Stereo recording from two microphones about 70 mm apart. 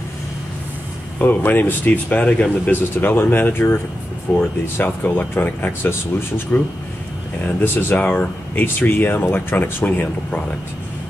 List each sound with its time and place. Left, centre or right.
1.2 s speech: left
7.6 s speech: left